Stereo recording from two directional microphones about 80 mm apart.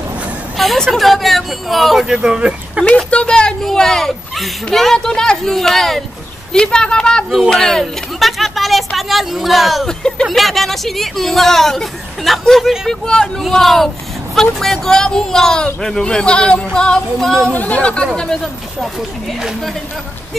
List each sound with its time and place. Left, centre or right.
0.6 s speech: centre
3.1 s speech: centre
17.5 s speech: centre
18.9 s speech: centre